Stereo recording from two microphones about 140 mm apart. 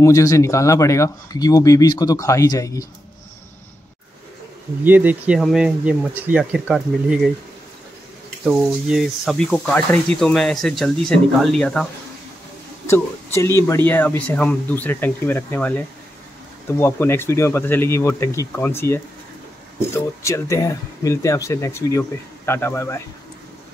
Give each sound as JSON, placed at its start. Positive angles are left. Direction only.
{"t": 0.0, "sound": "speech", "side_deg": 20}
{"t": 4.8, "sound": "speech", "side_deg": -10}
{"t": 8.8, "sound": "speech", "side_deg": -5}
{"t": 12.9, "sound": "speech", "side_deg": 20}